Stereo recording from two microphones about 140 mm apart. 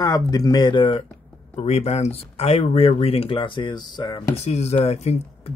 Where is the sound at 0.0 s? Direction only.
25° left (ahead or behind).